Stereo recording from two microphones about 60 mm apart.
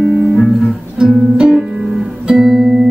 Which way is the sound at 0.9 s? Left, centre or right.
Centre.